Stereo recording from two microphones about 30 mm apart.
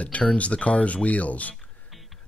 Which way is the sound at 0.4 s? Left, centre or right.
Left.